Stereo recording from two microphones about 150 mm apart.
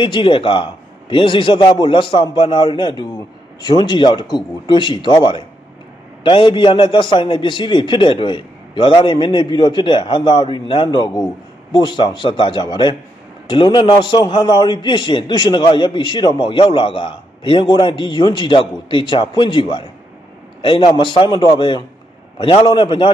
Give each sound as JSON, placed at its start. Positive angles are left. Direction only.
{"t": 0.0, "sound": "a man's voice", "side_deg": 35}